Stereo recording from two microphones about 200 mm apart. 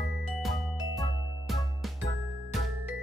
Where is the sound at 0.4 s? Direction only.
Centre (ahead or behind).